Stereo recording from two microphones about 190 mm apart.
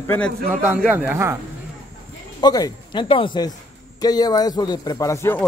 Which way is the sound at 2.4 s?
20° left (ahead or behind).